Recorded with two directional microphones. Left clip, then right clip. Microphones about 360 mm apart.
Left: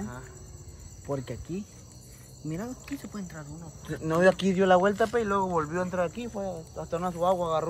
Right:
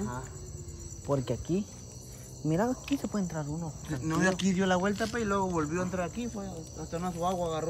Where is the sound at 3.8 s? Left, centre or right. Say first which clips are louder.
Left 7 dB; centre.